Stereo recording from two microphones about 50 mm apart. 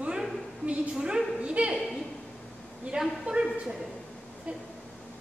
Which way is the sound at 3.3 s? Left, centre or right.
Right.